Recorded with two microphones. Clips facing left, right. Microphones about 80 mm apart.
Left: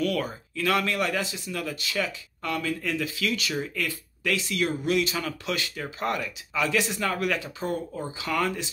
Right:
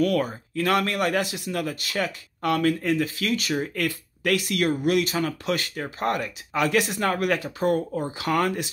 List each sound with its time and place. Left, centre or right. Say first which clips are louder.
0.0 s speech: right 4 dB; right
2.8 s speech: right 4 dB; right